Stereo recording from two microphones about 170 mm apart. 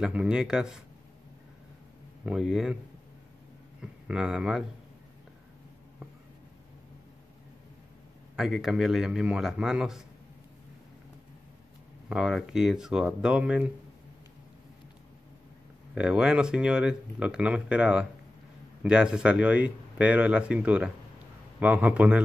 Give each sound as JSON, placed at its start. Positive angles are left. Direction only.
{"t": 0.0, "sound": "speech", "side_deg": -5}
{"t": 2.2, "sound": "speech", "side_deg": -5}
{"t": 3.8, "sound": "speech", "side_deg": -5}
{"t": 8.4, "sound": "speech", "side_deg": 0}
{"t": 12.1, "sound": "speech", "side_deg": 0}
{"t": 15.9, "sound": "speech", "side_deg": -5}